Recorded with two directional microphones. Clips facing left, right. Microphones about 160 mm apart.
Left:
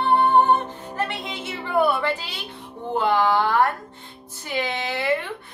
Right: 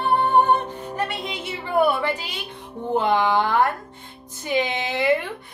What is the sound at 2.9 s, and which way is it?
Music, 15° right (ahead or behind).